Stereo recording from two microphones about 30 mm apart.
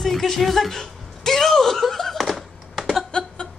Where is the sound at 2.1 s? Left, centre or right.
Centre.